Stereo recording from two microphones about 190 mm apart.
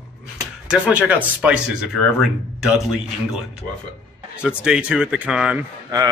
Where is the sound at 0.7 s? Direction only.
5° right (ahead or behind).